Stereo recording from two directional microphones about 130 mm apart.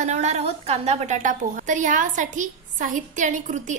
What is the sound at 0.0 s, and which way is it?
A woman's voice, 60° right (ahead or behind).